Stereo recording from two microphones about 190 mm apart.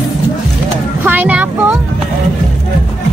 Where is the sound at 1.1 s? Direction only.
5° right (ahead or behind).